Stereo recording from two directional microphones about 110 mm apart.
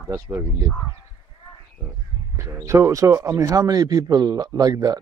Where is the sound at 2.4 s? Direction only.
25° right (ahead or behind).